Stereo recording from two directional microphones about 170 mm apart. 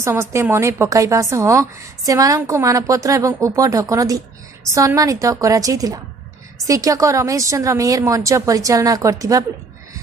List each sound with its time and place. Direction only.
0.0 s a woman's voice: 15° right (ahead or behind)